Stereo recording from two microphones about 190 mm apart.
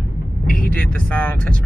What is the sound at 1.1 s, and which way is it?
Speech, 10° left (ahead or behind).